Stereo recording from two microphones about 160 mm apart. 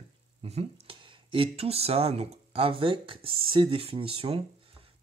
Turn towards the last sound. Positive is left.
turn(degrees=-35)  # may be behind; listen again after turning